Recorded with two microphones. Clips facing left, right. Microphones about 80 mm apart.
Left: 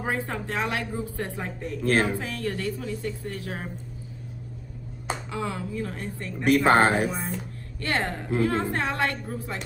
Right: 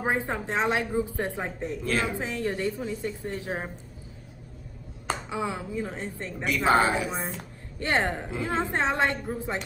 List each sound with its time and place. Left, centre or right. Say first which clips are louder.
0.0 s speech: right 2 dB; right
1.9 s speech: left 5 dB; left
2.1 s speech: right 1 dB; right
5.3 s speech: even; centre
6.4 s speech: left 4 dB; left
7.8 s speech: right 2 dB; right